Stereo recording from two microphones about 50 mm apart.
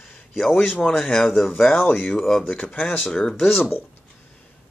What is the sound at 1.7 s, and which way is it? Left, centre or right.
Speech, left.